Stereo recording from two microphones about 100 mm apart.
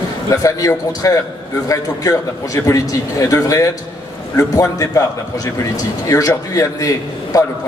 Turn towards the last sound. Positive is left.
turn(degrees=35)  # may be behind; listen again after turning